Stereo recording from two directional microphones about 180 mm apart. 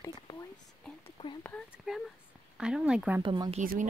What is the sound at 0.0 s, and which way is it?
Speech, 15° left (ahead or behind).